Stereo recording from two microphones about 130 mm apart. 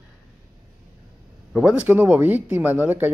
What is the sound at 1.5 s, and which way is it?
Speech, 10° right (ahead or behind).